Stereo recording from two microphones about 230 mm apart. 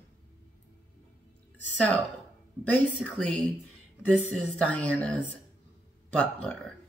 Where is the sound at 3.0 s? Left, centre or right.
Centre.